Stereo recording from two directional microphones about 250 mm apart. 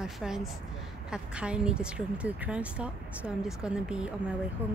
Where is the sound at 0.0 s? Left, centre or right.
Centre.